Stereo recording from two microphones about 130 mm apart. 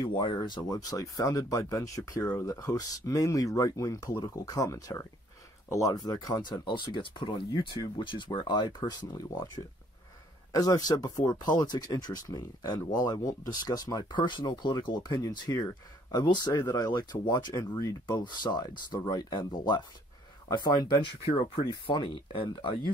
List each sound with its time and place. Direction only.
0.2 s speech: 35° left (ahead or behind)